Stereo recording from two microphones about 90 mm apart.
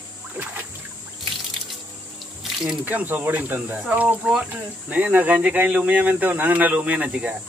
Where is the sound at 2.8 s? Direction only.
20° right (ahead or behind).